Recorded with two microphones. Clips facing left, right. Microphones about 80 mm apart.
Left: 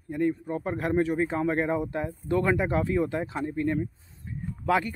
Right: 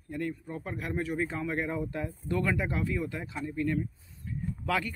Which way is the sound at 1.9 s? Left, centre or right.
Left.